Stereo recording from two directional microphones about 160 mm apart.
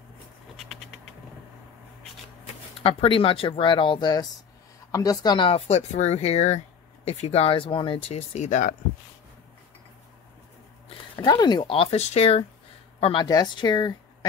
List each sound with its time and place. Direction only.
2.8 s speech: 35° left (ahead or behind); by 8.7 s 50° left (ahead or behind)
11.1 s speech: 30° left (ahead or behind)
13.0 s speech: 30° left (ahead or behind)